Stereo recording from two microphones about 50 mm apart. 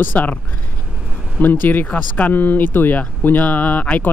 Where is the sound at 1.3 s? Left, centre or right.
Left.